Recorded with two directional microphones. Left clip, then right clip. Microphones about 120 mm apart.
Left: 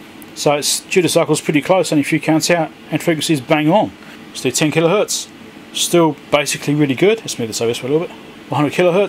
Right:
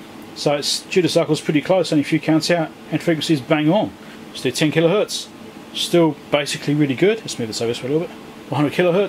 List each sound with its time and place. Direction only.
0.4 s speech: 30° left (ahead or behind)